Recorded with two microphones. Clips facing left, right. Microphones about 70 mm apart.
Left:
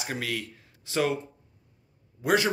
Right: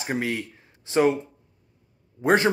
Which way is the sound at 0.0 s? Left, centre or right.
Right.